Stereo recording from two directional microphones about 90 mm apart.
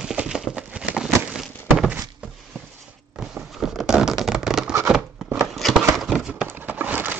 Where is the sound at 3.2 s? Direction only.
5° right (ahead or behind).